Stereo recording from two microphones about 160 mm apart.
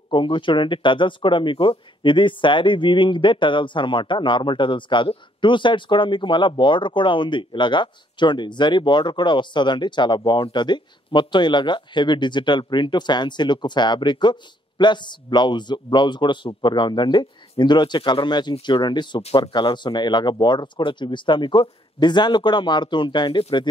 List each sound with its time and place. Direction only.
0.1 s speech: 30° left (ahead or behind)